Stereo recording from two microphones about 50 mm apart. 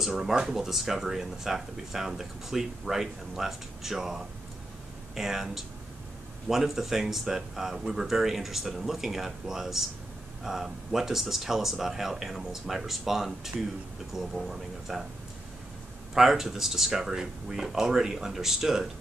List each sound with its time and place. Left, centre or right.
0.0 s speech: centre
16.2 s speech: centre